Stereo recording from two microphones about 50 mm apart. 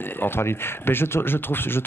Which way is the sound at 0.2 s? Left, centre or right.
Left.